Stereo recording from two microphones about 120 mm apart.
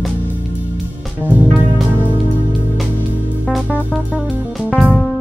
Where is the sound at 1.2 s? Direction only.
15° right (ahead or behind).